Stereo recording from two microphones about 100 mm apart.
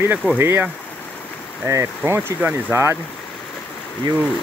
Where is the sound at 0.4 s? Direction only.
25° right (ahead or behind).